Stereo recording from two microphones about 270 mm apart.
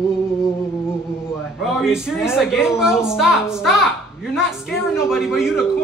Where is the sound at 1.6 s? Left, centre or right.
Centre.